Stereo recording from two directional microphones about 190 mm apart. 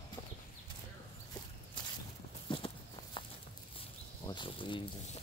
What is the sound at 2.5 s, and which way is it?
Walk, 25° left (ahead or behind).